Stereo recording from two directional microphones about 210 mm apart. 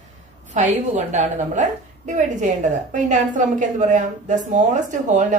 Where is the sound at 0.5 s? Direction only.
35° right (ahead or behind).